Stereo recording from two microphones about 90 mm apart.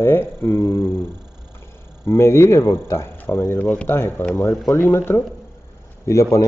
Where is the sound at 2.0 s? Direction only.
30° left (ahead or behind).